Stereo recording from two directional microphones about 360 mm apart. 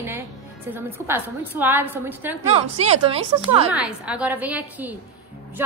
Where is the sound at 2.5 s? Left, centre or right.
Centre.